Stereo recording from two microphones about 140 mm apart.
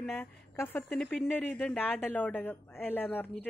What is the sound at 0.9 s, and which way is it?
A woman's voice, 5° left (ahead or behind).